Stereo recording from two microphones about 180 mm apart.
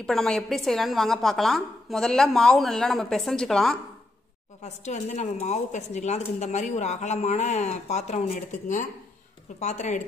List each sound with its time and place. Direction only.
0.0 s a woman's voice: 5° left (ahead or behind)
4.6 s a woman's voice: 40° left (ahead or behind)